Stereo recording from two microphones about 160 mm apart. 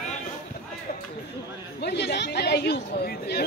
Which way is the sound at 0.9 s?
65° left (ahead or behind).